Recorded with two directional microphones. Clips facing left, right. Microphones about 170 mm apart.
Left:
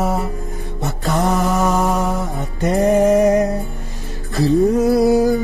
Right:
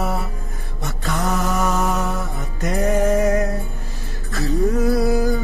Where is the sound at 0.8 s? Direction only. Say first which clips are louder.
Left 5 dB; 35° left (ahead or behind).